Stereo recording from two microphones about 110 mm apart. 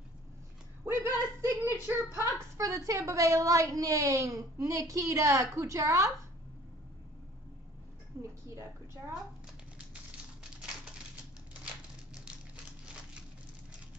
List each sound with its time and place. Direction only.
0.8 s speech: 25° right (ahead or behind)
8.2 s a woman's voice: 25° right (ahead or behind)